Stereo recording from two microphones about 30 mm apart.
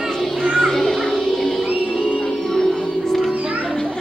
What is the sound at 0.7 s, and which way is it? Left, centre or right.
Music, centre.